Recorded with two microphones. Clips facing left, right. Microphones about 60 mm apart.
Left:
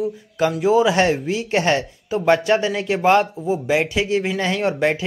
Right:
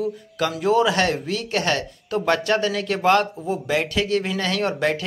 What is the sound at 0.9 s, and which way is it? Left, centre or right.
Speech, centre.